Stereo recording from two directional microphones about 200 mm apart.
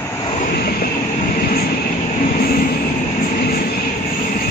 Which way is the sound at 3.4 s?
50° left (ahead or behind).